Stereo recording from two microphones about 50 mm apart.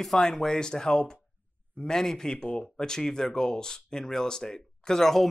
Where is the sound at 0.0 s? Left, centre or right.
Centre.